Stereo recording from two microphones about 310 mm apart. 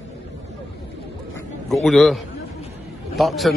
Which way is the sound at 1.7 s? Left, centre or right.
Centre.